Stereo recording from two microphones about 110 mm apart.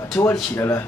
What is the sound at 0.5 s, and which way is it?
Speech, 25° left (ahead or behind).